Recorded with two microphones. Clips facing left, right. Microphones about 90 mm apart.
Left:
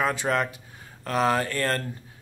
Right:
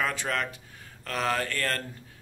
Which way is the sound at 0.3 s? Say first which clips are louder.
Left 5 dB; 20° left (ahead or behind).